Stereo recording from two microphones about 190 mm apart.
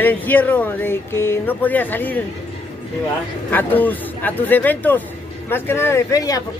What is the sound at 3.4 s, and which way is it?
Speech, 10° left (ahead or behind).